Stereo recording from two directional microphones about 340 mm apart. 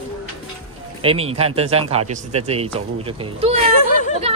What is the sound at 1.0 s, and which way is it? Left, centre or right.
Speech, centre.